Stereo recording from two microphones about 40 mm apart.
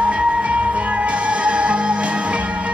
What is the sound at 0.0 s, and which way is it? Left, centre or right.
Music, right.